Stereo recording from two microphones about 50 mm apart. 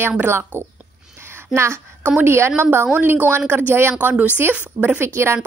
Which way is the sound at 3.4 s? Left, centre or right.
Right.